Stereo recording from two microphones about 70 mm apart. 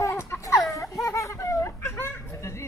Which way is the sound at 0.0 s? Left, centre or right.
Left.